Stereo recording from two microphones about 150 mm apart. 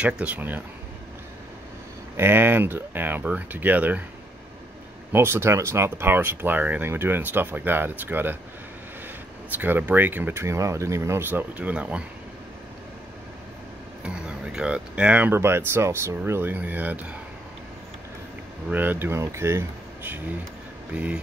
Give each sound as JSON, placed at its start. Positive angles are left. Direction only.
{"t": 0.0, "sound": "speech", "side_deg": -10}
{"t": 2.1, "sound": "speech", "side_deg": -15}
{"t": 5.1, "sound": "speech", "side_deg": -15}
{"t": 9.6, "sound": "speech", "side_deg": -10}
{"t": 14.0, "sound": "speech", "side_deg": -5}
{"t": 18.7, "sound": "speech", "side_deg": -10}